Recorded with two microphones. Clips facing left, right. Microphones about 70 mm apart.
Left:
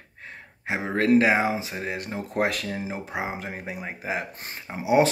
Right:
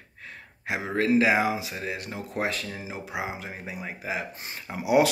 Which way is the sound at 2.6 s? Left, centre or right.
Left.